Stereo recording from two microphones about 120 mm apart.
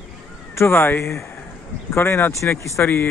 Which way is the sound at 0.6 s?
15° left (ahead or behind).